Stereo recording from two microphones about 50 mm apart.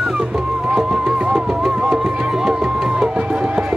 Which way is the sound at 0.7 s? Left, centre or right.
Centre.